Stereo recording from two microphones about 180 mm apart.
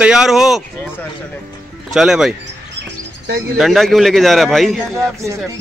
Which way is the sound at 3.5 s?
Centre (ahead or behind).